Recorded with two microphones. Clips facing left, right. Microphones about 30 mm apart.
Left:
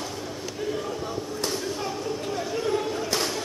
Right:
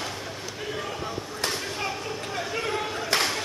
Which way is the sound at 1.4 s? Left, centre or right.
Right.